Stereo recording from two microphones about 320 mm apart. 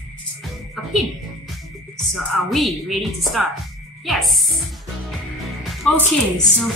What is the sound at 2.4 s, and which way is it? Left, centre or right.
Speech, centre.